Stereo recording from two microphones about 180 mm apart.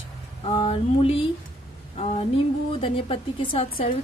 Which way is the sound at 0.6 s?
30° left (ahead or behind).